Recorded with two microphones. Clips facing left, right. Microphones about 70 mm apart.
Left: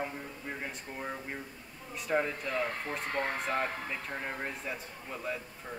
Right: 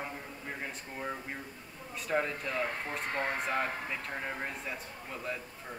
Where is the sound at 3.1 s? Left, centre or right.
Right.